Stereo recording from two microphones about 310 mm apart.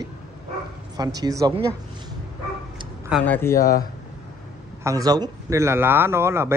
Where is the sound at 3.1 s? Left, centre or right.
Centre.